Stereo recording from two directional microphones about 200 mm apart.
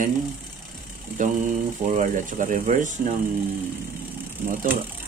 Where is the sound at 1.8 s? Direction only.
40° right (ahead or behind).